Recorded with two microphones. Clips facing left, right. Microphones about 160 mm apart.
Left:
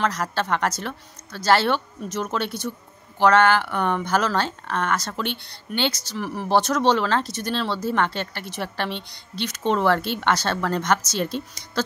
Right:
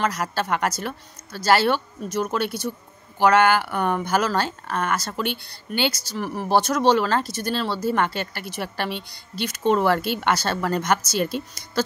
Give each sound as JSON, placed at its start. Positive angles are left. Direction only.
{"t": 0.0, "sound": "a woman's voice", "side_deg": -5}